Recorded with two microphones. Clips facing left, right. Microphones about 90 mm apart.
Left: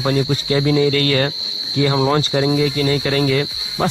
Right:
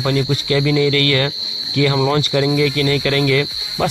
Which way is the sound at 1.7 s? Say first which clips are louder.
Even; 25° left (ahead or behind).